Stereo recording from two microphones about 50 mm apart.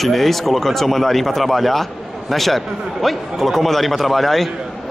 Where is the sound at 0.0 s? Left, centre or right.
Centre.